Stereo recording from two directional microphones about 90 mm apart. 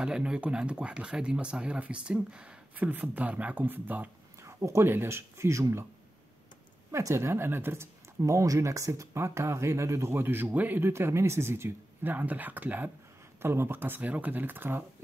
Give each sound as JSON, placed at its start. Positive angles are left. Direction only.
{"t": 0.0, "sound": "speech", "side_deg": -10}
{"t": 4.4, "sound": "speech", "side_deg": -35}
{"t": 6.9, "sound": "speech", "side_deg": -35}